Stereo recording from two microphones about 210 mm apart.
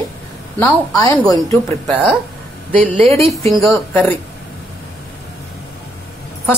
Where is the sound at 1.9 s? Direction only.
5° right (ahead or behind).